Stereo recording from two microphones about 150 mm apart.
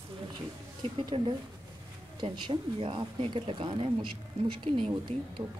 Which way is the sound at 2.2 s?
35° right (ahead or behind).